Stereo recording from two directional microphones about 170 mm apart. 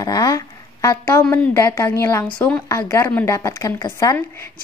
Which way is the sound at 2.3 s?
5° left (ahead or behind).